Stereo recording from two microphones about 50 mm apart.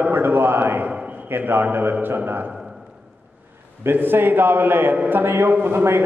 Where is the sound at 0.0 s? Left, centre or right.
Right.